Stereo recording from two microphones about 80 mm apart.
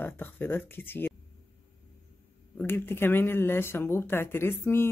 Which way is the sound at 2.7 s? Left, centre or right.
Left.